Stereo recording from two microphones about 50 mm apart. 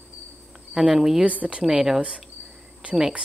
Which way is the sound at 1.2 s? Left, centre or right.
Right.